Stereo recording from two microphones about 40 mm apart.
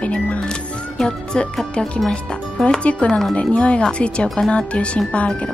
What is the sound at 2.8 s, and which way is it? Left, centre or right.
Music, left.